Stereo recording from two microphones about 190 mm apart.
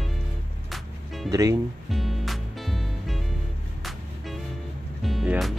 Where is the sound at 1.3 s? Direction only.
15° right (ahead or behind).